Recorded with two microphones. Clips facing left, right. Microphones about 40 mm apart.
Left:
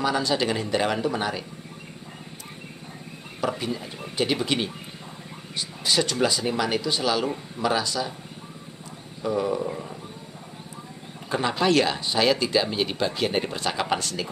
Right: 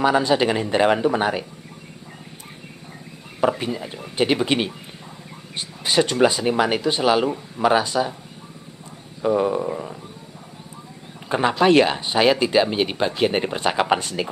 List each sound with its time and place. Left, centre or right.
0.0 s speech: right
3.3 s speech: right
9.2 s speech: right
11.2 s speech: right